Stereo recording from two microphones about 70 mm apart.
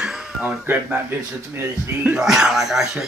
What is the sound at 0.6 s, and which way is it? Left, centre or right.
A man's voice, right.